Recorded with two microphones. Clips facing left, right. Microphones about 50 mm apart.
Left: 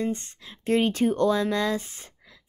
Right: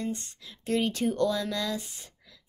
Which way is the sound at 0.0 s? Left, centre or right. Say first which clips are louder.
Left 5 dB; left.